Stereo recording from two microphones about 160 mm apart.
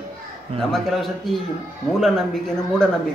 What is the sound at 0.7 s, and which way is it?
Speech, centre (ahead or behind).